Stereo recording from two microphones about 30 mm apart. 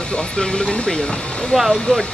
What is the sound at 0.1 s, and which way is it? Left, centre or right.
Speech, left.